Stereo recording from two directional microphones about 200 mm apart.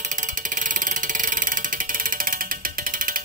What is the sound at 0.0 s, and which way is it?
Music, 40° right (ahead or behind).